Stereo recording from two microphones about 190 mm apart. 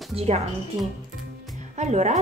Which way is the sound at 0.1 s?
30° right (ahead or behind).